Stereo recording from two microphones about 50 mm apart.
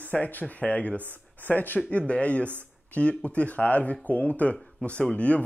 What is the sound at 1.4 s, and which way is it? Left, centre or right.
Speech, left.